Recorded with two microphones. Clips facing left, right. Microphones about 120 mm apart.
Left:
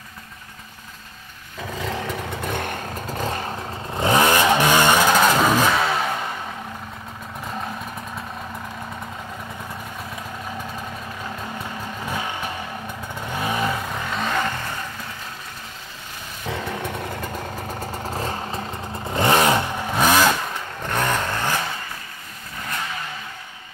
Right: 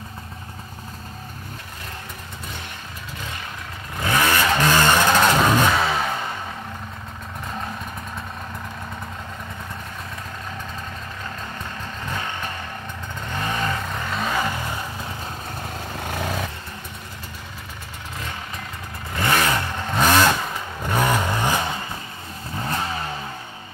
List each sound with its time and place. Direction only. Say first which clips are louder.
1.9 s vehicle: left 11 dB; 90° left; by 3.5 s 40° left (ahead or behind)
3.9 s vehicle: left 4 dB; 25° left (ahead or behind); by 6.3 s centre (ahead or behind)
11.5 s vehicle: left 2 dB; 10° left (ahead or behind); by 14.8 s 10° right (ahead or behind)
16.0 s vehicle: right 14 dB; 70° right (ahead or behind)
16.4 s motorcycle: left 8 dB; 90° left; by 17.5 s 55° left (ahead or behind)
18.0 s vehicle: left 5 dB; 35° left (ahead or behind)
19.0 s vehicle: left 4 dB; 25° left (ahead or behind)
19.7 s vehicle: even; 10° left (ahead or behind); by 21.5 s 15° right (ahead or behind)
22.6 s vehicle: right 4 dB; 30° right (ahead or behind)